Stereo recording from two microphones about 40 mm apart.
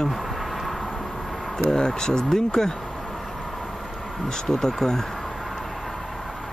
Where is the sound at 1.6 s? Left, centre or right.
Centre.